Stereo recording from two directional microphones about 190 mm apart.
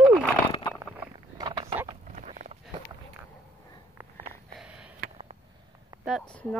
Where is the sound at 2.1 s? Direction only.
40° right (ahead or behind).